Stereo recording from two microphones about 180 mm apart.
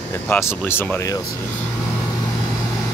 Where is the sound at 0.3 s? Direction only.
10° left (ahead or behind).